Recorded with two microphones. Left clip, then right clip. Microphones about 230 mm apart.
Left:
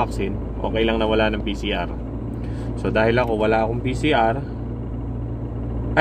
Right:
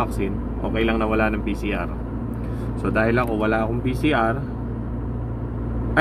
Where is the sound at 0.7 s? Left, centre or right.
Centre.